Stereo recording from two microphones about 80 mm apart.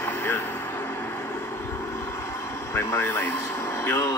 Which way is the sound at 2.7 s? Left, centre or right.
Left.